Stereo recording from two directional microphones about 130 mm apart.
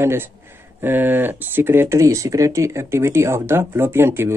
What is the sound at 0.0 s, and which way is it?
Speech, 20° right (ahead or behind).